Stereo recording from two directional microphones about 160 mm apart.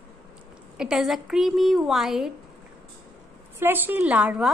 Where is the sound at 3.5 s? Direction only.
10° right (ahead or behind).